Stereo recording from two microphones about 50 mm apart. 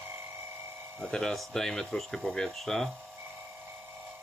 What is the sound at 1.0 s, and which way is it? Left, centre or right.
Speech, centre.